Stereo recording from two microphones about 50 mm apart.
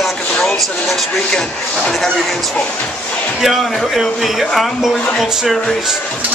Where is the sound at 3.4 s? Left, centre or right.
Centre.